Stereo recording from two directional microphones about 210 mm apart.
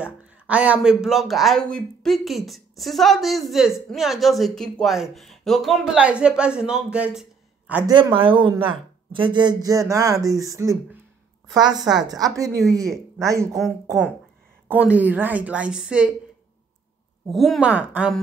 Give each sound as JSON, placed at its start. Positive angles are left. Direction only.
{"t": 0.0, "sound": "speech", "side_deg": -5}
{"t": 7.9, "sound": "speech", "side_deg": -25}
{"t": 11.7, "sound": "speech", "side_deg": 0}
{"t": 12.0, "sound": "speech", "side_deg": -15}
{"t": 14.7, "sound": "speech", "side_deg": -5}
{"t": 17.3, "sound": "speech", "side_deg": 0}